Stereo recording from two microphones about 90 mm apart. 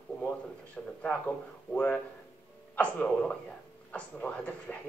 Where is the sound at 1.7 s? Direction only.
15° left (ahead or behind).